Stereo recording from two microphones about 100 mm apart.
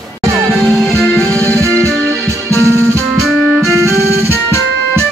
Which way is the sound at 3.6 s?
30° right (ahead or behind).